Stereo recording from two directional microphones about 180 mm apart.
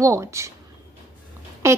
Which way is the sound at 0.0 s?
15° right (ahead or behind).